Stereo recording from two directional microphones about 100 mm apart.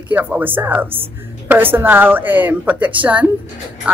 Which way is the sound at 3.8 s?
10° right (ahead or behind).